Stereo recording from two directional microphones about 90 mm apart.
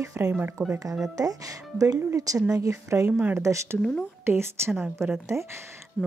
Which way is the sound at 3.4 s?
35° right (ahead or behind).